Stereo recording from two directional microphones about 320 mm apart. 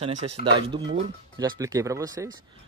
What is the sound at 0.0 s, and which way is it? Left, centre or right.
Speech, centre.